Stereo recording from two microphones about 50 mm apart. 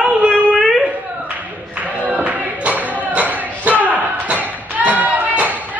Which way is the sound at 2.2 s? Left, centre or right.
Right.